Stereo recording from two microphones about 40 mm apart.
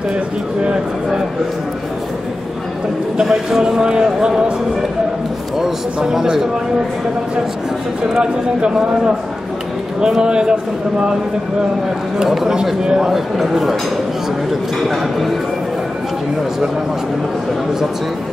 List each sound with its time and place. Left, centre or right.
3.2 s a man's voice: centre
6.2 s a man's voice: centre
8.1 s a man's voice: right
12.2 s a man's voice: centre
13.4 s a man's voice: centre
14.8 s a man's voice: centre